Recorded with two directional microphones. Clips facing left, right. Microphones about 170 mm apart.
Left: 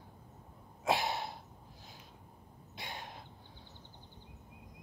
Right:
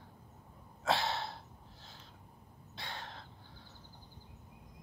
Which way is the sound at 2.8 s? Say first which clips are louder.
Even; 15° left (ahead or behind).